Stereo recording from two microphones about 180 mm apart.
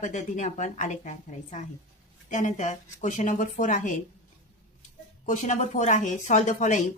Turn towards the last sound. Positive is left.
turn(degrees=45)  # may be behind; listen again after turning